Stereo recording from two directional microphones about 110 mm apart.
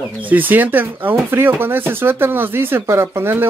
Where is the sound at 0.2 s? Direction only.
15° right (ahead or behind).